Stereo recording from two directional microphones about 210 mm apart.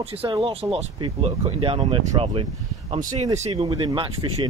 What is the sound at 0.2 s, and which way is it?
Speech, 25° right (ahead or behind).